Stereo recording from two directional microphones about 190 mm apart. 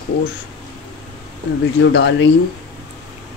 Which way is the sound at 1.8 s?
65° left (ahead or behind).